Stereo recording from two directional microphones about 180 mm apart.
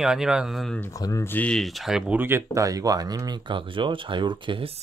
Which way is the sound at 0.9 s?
20° left (ahead or behind).